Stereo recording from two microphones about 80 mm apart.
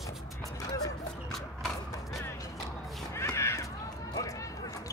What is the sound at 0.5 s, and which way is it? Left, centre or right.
Vehicle, left.